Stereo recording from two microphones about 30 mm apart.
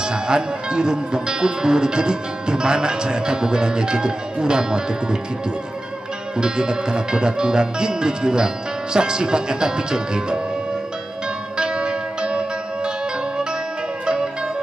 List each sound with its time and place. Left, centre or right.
0.0 s speech: right
6.3 s speech: right
11.5 s music: right
14.0 s music: right